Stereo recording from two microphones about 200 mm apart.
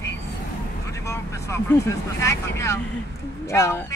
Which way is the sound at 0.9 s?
15° left (ahead or behind).